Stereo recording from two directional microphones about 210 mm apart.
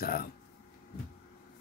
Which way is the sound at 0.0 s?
45° left (ahead or behind).